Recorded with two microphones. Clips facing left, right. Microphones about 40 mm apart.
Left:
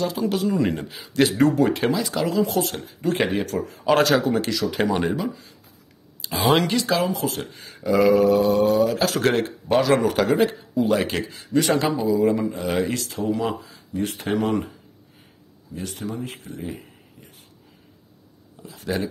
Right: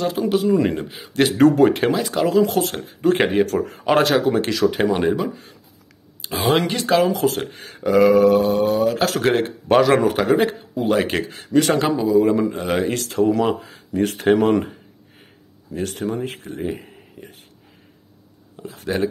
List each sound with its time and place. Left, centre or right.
0.0 s speech: right
0.7 s a man's voice: right
1.4 s a man's voice: right
3.5 s a man's voice: right
4.3 s a man's voice: right
6.2 s a sound: right
6.6 s a man's voice: right
8.5 s a man's voice: right
9.2 s a man's voice: right
13.4 s speech: right
18.6 s speech: right